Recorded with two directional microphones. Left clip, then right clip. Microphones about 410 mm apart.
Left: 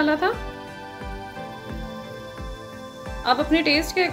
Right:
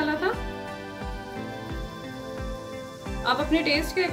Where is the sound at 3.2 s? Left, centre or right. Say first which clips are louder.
Left 4 dB; centre.